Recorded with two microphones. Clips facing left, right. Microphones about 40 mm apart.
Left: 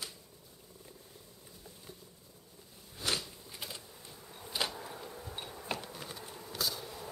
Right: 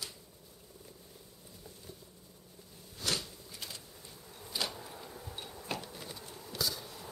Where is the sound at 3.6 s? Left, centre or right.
Centre.